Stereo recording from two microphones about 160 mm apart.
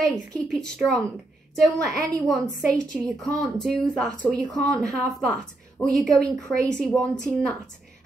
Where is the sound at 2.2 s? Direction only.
5° left (ahead or behind).